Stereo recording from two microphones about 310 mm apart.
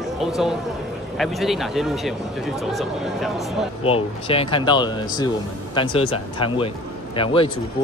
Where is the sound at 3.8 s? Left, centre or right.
Centre.